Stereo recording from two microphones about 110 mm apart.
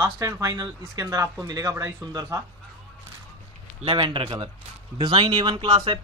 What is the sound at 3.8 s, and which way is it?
Speech, 50° right (ahead or behind).